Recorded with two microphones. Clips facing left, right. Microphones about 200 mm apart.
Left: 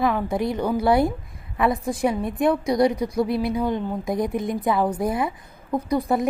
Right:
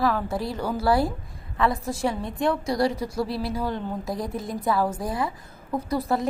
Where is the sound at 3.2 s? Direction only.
55° left (ahead or behind).